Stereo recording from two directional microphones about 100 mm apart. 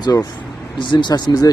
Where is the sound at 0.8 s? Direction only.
50° left (ahead or behind).